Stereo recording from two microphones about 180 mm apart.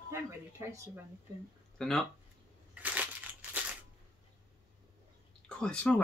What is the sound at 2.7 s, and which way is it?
Crushing, 10° right (ahead or behind).